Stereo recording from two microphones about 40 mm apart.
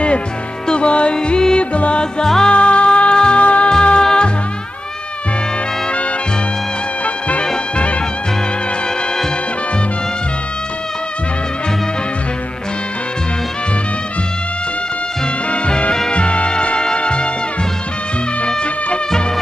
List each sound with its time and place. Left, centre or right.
0.7 s music: left
2.2 s music: centre
2.5 s music: left
4.0 s music: centre
15.5 s music: left